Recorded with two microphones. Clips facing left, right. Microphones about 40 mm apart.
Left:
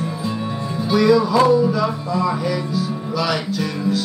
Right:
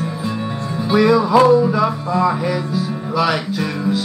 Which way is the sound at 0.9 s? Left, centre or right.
Right.